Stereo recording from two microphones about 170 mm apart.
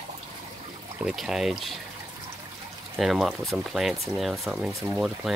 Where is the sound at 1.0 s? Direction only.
5° right (ahead or behind).